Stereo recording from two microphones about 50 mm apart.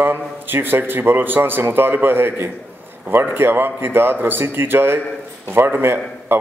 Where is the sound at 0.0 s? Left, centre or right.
Right.